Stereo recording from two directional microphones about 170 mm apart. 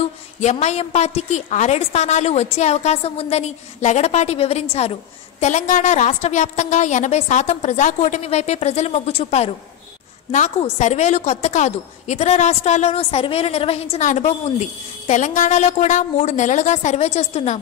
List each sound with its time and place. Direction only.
0.4 s a woman's voice: 40° left (ahead or behind)
10.8 s a woman's voice: 45° left (ahead or behind)